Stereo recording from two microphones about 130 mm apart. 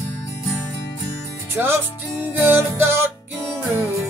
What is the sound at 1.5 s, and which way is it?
Music, 15° right (ahead or behind).